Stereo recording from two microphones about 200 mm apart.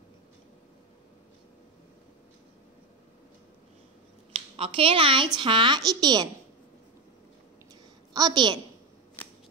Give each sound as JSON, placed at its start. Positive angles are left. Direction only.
{"t": 4.3, "sound": "a woman's voice", "side_deg": -25}
{"t": 8.1, "sound": "a woman's voice", "side_deg": -20}